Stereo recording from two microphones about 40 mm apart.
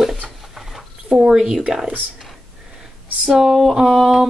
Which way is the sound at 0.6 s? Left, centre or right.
Centre.